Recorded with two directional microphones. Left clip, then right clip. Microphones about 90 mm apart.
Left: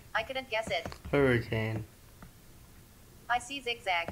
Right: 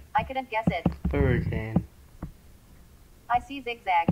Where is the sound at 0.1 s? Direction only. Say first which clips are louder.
Right 6 dB; 5° left (ahead or behind).